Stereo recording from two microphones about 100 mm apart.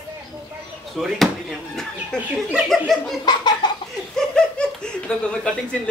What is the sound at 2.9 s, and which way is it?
Laughter, centre (ahead or behind).